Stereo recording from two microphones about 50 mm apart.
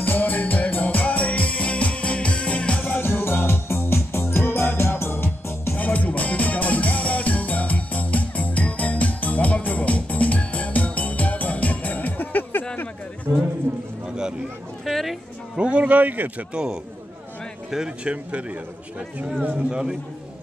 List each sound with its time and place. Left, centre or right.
0.0 s music: left
2.9 s music: left
5.8 s music: left
13.3 s a sound: right
13.7 s a sound: right
14.0 s a sound: centre
14.9 s a woman's voice: centre
15.5 s a man's voice: right
16.5 s a man's voice: centre
18.0 s a man's voice: right
19.7 s speech: centre